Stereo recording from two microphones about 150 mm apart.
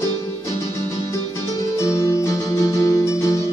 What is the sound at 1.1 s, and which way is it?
Music, 20° left (ahead or behind).